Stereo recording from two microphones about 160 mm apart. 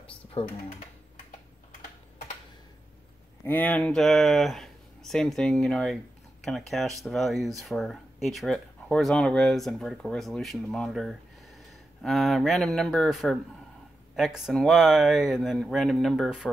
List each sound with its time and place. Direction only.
0.0 s typing: 35° left (ahead or behind)
3.4 s speech: 10° left (ahead or behind)